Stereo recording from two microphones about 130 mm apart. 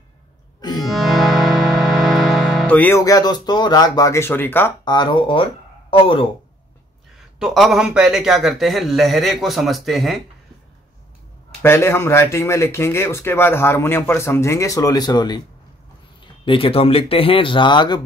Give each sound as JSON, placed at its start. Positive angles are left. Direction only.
{"t": 0.6, "sound": "music", "side_deg": 30}
{"t": 0.9, "sound": "music", "side_deg": 0}
{"t": 2.7, "sound": "speech", "side_deg": 15}
{"t": 3.0, "sound": "speech", "side_deg": 30}
{"t": 4.8, "sound": "speech", "side_deg": 35}
{"t": 7.3, "sound": "a man's voice", "side_deg": 0}
{"t": 11.6, "sound": "speech", "side_deg": 20}
{"t": 16.4, "sound": "speech", "side_deg": 45}